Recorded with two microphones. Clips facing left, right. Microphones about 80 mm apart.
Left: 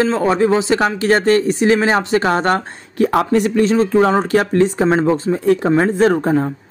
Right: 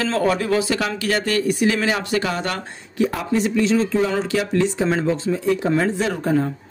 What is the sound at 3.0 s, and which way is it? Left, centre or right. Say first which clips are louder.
Speech: left 8 dB; left.